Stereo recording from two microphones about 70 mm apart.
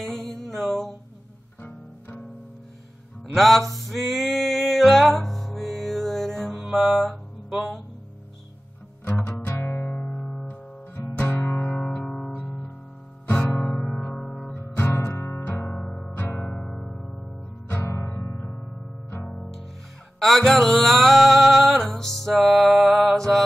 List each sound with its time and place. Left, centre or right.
0.0 s mantra: centre
1.6 s music: left
3.3 s music: centre
9.2 s music: left
11.8 s guitar: centre
13.4 s music: centre
14.1 s guitar: centre
14.5 s music: left
15.7 s music: centre
17.6 s guitar: left
19.2 s music: centre
22.8 s mantra: centre